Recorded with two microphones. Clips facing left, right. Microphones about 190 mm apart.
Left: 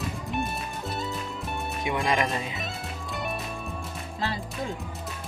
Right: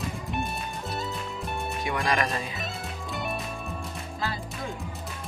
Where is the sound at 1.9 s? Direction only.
20° left (ahead or behind).